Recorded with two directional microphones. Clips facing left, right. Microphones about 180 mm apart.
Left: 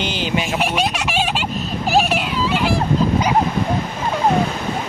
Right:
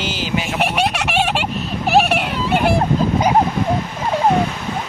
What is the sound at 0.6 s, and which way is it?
Fowl, 65° right (ahead or behind).